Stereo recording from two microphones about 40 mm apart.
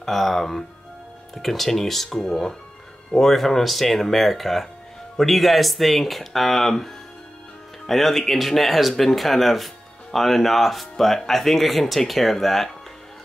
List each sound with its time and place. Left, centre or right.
0.0 s speech: centre